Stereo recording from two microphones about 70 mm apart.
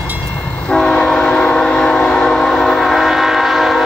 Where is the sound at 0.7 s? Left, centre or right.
Centre.